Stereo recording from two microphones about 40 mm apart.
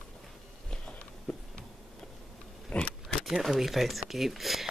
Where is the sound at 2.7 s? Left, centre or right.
Left.